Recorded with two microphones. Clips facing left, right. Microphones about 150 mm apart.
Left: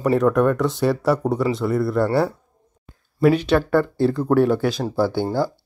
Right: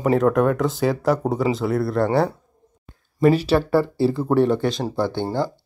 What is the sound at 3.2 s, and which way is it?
Speech, centre (ahead or behind).